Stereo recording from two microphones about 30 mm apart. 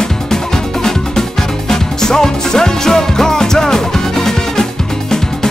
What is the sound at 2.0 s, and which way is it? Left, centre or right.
Music, centre.